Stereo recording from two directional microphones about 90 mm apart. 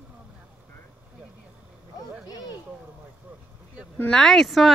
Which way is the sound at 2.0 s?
45° left (ahead or behind).